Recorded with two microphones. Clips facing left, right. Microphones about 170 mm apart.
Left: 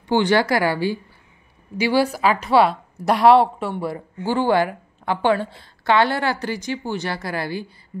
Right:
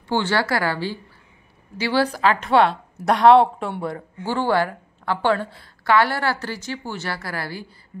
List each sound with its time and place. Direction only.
0.1 s a woman's voice: 15° left (ahead or behind)